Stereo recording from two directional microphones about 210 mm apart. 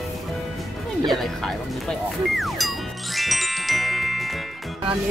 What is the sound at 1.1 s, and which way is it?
Speech, centre (ahead or behind).